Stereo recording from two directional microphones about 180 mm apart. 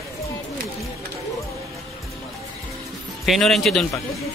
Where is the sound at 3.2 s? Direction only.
Centre (ahead or behind).